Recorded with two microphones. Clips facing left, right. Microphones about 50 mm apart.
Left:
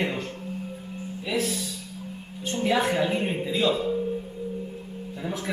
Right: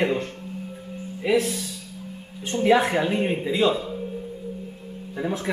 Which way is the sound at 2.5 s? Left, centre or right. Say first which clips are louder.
Right 5 dB; right.